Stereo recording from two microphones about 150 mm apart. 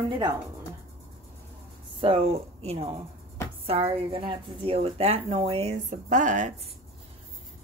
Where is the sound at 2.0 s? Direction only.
40° right (ahead or behind); by 6.5 s 55° right (ahead or behind).